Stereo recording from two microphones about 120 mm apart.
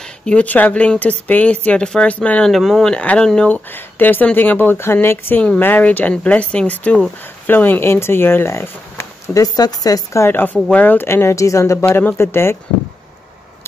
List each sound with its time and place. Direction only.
0.2 s speech: 10° left (ahead or behind)
9.3 s speech: 30° left (ahead or behind)